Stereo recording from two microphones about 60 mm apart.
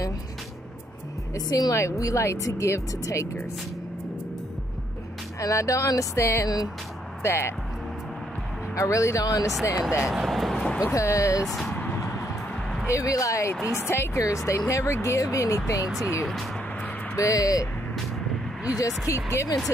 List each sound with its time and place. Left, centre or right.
1.3 s speech: left
5.4 s speech: left
6.4 s speech: left
7.2 s speech: left
8.7 s speech: left
10.0 s speech: centre
10.8 s speech: left
11.6 s a sound: left
12.8 s speech: left
14.2 s speech: left
17.1 s speech: left
18.8 s speech: left